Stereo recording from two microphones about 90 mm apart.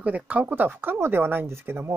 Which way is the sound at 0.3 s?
15° right (ahead or behind).